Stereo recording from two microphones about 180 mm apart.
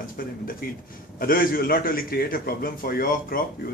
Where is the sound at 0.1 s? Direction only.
55° left (ahead or behind).